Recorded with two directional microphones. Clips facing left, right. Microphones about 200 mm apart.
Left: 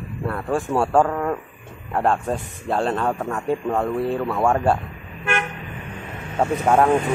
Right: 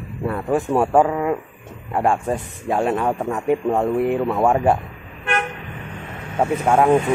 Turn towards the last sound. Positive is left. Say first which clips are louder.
# right 1 dB
turn(degrees=-10)  # may be behind; listen again after turning